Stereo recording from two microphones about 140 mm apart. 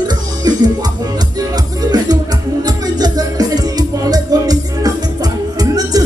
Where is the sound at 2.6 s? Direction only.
30° right (ahead or behind).